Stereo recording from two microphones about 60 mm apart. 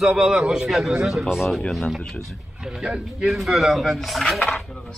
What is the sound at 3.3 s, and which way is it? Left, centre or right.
Speech, centre.